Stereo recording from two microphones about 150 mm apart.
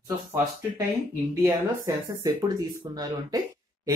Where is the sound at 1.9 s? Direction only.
25° right (ahead or behind).